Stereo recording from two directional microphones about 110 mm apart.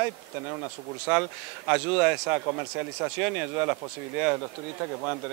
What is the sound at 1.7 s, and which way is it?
Speech, 15° right (ahead or behind).